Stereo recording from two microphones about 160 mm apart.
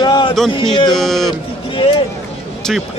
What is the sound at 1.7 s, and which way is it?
Speech, 35° left (ahead or behind).